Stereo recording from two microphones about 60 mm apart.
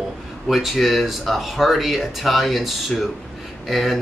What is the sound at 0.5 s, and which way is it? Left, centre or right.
Speech, centre.